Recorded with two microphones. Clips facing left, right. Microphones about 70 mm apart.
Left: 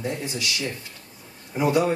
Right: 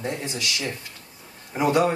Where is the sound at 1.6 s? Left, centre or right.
Right.